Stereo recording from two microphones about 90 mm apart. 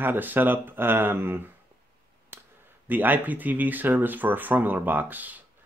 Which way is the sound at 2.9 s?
20° right (ahead or behind).